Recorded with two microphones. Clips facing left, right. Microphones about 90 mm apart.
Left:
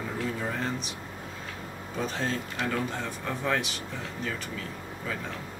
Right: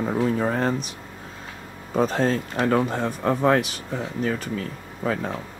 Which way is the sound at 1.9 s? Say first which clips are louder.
Right 10 dB; 45° right (ahead or behind).